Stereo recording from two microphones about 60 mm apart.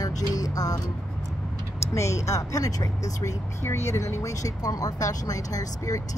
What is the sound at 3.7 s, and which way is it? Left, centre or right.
Speech, left.